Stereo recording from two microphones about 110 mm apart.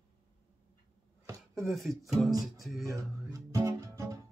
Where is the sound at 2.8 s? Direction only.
30° right (ahead or behind).